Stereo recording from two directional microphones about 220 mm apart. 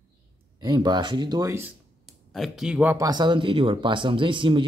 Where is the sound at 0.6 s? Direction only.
20° right (ahead or behind).